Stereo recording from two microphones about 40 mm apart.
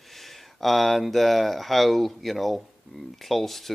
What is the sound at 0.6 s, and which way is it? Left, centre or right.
Speech, centre.